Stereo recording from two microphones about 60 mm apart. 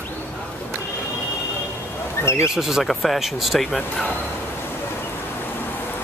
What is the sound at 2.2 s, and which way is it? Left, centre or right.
Speech, left.